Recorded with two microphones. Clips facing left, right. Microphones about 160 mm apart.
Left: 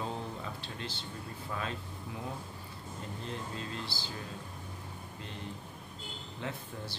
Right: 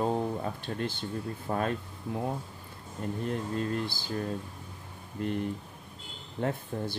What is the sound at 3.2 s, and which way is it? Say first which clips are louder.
Speech: right 9 dB; 50° right (ahead or behind).